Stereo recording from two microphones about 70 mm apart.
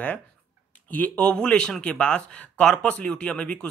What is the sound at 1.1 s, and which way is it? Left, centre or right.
Speech, centre.